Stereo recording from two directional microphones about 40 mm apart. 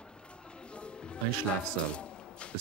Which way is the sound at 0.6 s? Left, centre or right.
Left.